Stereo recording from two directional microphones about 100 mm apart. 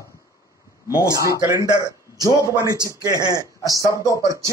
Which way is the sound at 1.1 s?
35° right (ahead or behind).